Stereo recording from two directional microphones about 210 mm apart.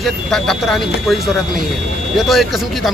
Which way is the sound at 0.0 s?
Centre (ahead or behind).